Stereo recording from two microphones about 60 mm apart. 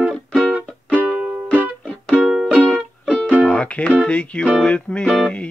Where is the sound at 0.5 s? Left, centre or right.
Right.